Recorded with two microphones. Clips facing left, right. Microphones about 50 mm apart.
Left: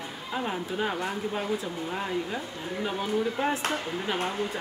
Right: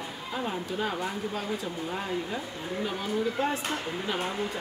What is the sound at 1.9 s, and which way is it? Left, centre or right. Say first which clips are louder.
Speech: left 2 dB; centre.